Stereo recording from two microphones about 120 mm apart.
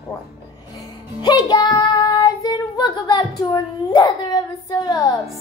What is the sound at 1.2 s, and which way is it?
Child singing, 35° left (ahead or behind).